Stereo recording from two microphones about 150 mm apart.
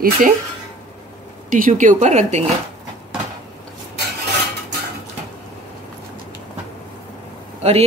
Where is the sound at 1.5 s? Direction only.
60° right (ahead or behind).